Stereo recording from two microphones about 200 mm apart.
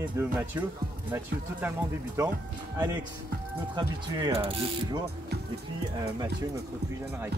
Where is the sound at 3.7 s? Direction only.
20° right (ahead or behind).